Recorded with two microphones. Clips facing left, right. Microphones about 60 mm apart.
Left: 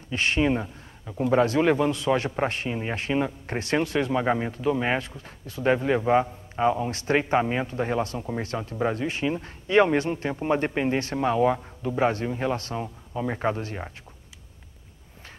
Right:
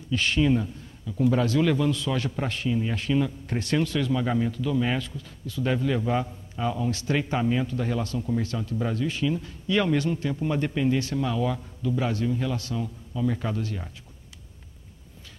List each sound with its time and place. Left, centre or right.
0.1 s a man's voice: left